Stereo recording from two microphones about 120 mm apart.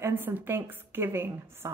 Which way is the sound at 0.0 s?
15° right (ahead or behind).